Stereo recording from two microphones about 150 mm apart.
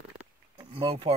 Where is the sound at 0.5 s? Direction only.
35° right (ahead or behind).